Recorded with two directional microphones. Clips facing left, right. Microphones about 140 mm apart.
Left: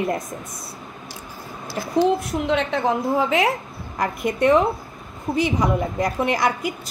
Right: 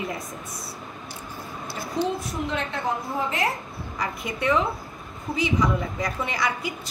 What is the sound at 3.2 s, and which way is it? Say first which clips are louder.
Speech: left 5 dB; 80° left.